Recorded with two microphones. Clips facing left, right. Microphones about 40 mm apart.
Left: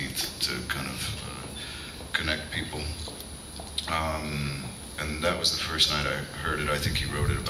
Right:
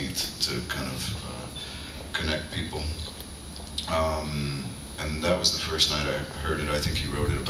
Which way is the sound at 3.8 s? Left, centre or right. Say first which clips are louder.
Right 3 dB; left.